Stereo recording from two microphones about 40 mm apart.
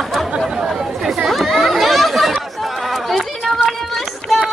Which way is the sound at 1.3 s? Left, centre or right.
Centre.